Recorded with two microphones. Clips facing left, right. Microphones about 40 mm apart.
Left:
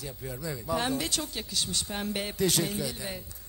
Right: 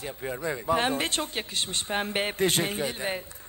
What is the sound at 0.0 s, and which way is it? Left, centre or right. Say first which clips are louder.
A woman's voice: right 6 dB; right.